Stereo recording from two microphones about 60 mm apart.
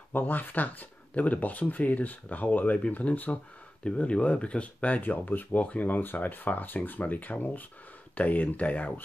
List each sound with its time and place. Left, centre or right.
0.1 s speech: left